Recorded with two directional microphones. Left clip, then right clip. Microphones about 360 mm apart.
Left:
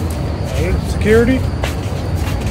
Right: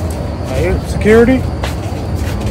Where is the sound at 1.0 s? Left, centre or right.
Centre.